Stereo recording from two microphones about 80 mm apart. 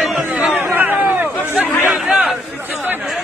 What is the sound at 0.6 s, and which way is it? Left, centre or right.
Chatter, right.